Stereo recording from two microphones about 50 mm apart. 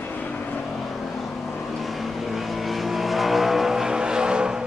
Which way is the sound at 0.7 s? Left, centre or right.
Centre.